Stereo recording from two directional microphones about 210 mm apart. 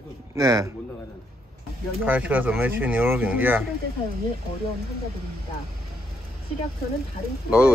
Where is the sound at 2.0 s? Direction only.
5° right (ahead or behind).